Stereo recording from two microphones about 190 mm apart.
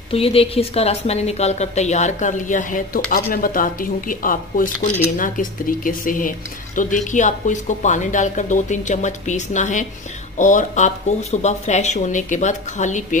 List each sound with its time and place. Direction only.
0.1 s speech: 30° left (ahead or behind)